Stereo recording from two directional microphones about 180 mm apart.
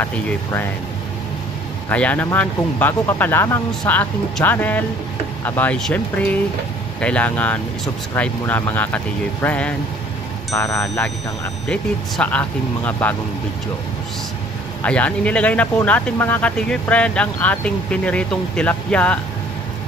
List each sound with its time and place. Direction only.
0.0 s speech: 10° left (ahead or behind)
1.9 s speech: 10° left (ahead or behind)
11.6 s speech: 5° left (ahead or behind)
14.8 s speech: 10° left (ahead or behind)